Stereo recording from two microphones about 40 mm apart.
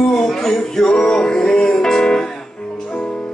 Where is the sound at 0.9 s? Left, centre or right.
Centre.